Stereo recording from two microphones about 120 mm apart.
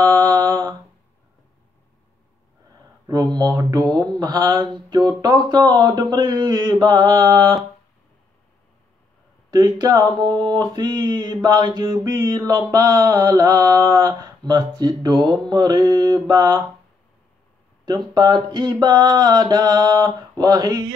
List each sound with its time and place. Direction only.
0.3 s mantra: 30° right (ahead or behind)
3.1 s mantra: 35° right (ahead or behind)
9.5 s mantra: 35° right (ahead or behind)
17.8 s mantra: 35° right (ahead or behind)